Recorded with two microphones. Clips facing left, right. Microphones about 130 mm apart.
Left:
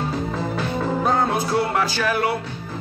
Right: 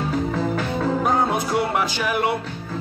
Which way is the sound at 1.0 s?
15° right (ahead or behind).